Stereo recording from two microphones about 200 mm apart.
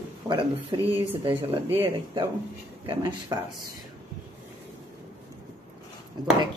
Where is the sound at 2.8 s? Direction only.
25° right (ahead or behind).